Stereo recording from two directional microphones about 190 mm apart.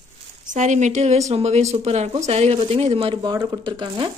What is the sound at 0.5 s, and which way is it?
Speech, 40° right (ahead or behind).